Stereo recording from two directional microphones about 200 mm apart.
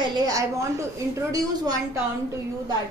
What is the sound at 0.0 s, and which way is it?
A woman's voice, 20° right (ahead or behind).